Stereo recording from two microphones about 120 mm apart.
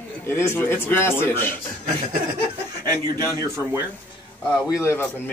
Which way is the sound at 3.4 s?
20° right (ahead or behind).